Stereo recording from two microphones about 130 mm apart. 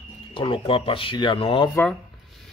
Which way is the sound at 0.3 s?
45° left (ahead or behind).